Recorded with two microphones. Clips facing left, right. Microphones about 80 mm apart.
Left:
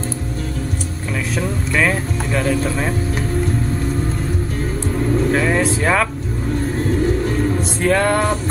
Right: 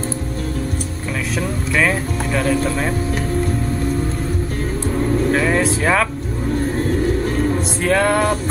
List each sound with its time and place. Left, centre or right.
1.8 s speech: centre
5.3 s speech: centre
7.8 s speech: centre